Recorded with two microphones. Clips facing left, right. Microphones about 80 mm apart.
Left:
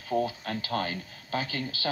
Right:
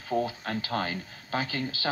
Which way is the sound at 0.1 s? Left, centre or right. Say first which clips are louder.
Even; right.